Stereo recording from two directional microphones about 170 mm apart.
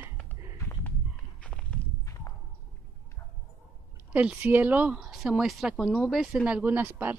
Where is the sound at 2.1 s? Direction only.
20° left (ahead or behind).